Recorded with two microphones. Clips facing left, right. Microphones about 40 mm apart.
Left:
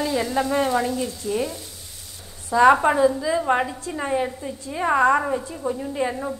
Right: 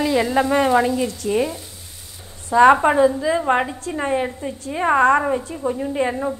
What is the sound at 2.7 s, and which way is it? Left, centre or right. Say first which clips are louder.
A woman's voice: right 3 dB; centre.